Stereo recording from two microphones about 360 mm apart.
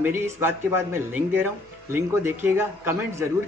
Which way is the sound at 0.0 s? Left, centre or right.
Centre.